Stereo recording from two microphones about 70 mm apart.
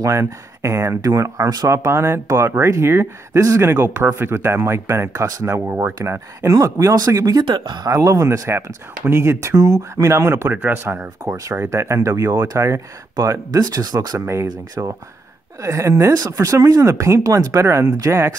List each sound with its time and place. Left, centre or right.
0.0 s speech: right
3.6 s speech: right
5.2 s speech: right
7.9 s speech: right
11.2 s speech: right
11.7 s speech: right
13.2 s speech: right
14.2 s speech: right